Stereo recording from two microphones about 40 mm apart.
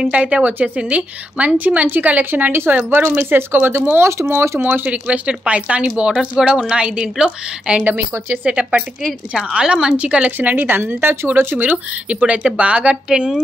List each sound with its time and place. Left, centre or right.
0.0 s a woman's voice: right
1.6 s speech: right
2.9 s speech: right
5.3 s a woman's voice: right
10.3 s speech: right
12.2 s a woman's voice: right